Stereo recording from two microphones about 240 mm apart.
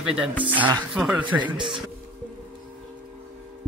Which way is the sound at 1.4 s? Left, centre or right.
Centre.